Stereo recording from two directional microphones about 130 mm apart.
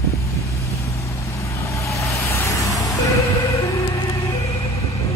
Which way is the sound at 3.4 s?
20° left (ahead or behind).